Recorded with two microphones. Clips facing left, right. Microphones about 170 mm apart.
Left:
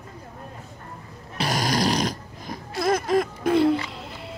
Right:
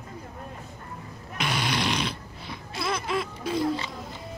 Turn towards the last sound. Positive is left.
turn(degrees=60)  # may be behind; listen again after turning